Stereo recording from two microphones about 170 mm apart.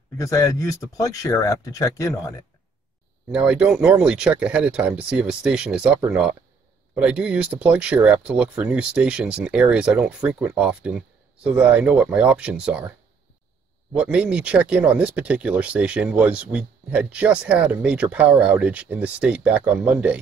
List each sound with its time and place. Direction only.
0.2 s speech: 20° left (ahead or behind)
3.3 s speech: 5° right (ahead or behind)
13.9 s speech: 5° right (ahead or behind)